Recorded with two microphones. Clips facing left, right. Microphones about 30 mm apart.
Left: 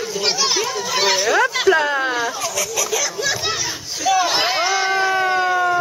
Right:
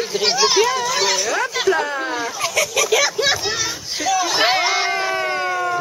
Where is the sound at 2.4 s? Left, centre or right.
Right.